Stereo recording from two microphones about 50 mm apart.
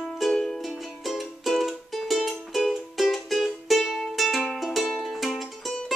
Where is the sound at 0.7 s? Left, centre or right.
Centre.